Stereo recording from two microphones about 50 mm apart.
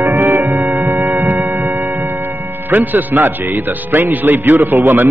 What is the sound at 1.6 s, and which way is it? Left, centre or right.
Music, right.